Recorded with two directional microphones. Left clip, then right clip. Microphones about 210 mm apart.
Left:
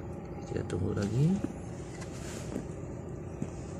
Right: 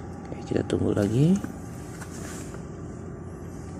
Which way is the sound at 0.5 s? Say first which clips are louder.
Right 10 dB; 5° right (ahead or behind).